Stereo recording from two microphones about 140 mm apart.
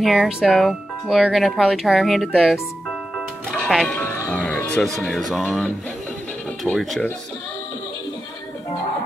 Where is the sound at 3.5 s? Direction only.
Centre (ahead or behind).